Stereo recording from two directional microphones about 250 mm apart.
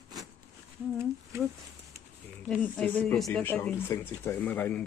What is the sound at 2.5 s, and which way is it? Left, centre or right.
Speech, centre.